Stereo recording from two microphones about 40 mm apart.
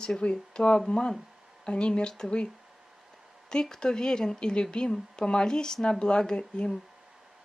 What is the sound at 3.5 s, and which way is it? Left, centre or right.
A woman's voice, centre.